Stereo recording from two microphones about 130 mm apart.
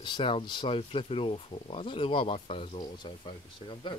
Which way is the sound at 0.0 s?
40° left (ahead or behind).